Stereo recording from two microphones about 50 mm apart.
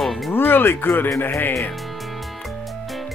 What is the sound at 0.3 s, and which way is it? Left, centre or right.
Music, left.